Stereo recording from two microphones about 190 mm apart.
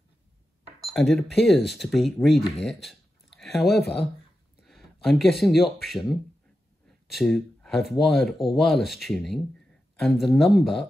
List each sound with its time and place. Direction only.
0.9 s speech: centre (ahead or behind)
2.6 s a sound: centre (ahead or behind)
3.6 s speech: 60° left (ahead or behind)
4.6 s speech: centre (ahead or behind)